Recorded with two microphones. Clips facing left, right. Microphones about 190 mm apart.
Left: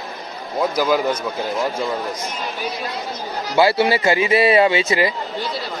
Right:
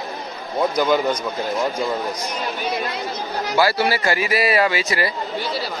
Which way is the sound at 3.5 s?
25° left (ahead or behind).